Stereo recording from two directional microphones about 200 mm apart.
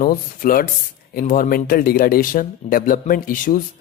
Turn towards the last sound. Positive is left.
turn(degrees=45)  # may be behind; listen again after turning